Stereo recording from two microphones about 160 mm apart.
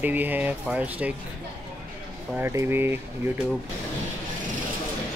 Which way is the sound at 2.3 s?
15° right (ahead or behind).